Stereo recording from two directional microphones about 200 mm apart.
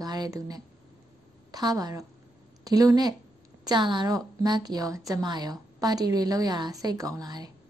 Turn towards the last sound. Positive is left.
turn(degrees=-20)  # may be behind; listen again after turning